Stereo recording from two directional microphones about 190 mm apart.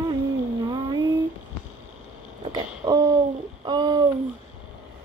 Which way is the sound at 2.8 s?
20° right (ahead or behind).